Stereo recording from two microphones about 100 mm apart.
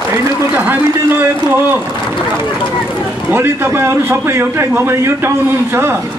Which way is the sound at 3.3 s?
20° right (ahead or behind).